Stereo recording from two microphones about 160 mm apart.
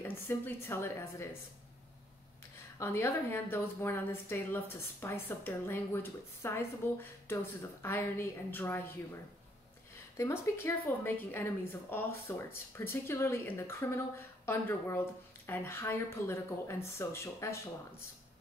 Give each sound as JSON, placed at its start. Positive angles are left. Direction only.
{"t": 0.3, "sound": "a woman's voice", "side_deg": 15}
{"t": 2.8, "sound": "a woman's voice", "side_deg": 15}
{"t": 10.1, "sound": "a woman's voice", "side_deg": 15}